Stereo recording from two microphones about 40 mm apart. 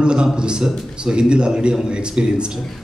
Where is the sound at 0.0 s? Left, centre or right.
Right.